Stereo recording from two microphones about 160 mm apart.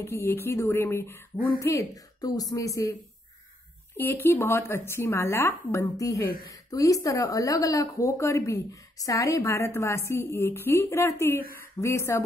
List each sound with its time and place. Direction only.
0.0 s a woman's voice: 15° left (ahead or behind)